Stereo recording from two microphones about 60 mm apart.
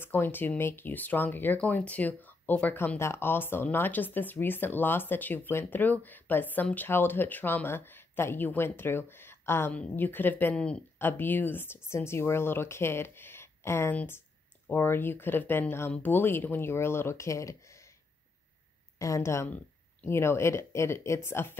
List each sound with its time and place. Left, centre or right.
0.0 s speech: left
3.0 s speech: left
10.5 s speech: centre
11.0 s speech: left
18.9 s speech: left